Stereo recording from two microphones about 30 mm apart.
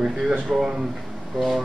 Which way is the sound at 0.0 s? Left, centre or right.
Right.